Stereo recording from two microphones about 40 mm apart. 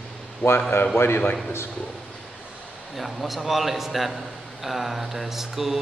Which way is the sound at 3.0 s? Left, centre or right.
Centre.